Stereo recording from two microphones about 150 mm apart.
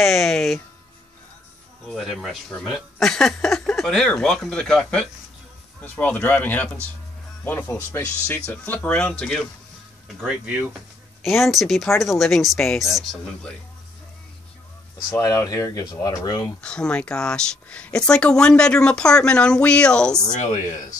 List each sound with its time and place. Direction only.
0.0 s speech: centre (ahead or behind)
1.9 s speech: centre (ahead or behind)
10.2 s speech: 10° right (ahead or behind)
15.0 s speech: 20° left (ahead or behind)
16.6 s speech: 5° left (ahead or behind)